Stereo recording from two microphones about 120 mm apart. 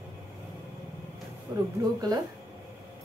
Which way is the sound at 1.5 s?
35° right (ahead or behind).